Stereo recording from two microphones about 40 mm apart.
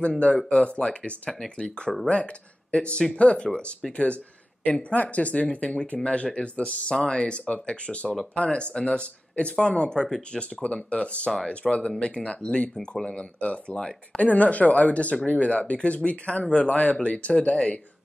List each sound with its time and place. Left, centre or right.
0.5 s speech: left; by 10.4 s centre
10.4 s speech: left